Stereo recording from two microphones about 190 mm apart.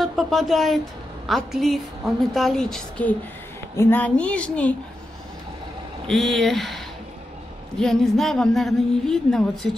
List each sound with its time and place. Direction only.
0.0 s a woman's voice: centre (ahead or behind)
6.0 s a woman's voice: centre (ahead or behind)